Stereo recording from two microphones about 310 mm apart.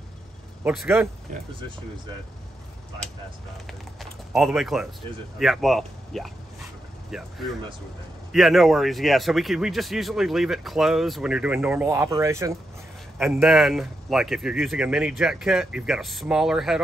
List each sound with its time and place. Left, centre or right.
0.7 s speech: centre
1.3 s speech: right
3.6 s a man's voice: centre